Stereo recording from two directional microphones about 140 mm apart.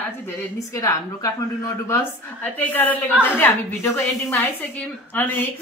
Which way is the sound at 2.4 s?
10° left (ahead or behind).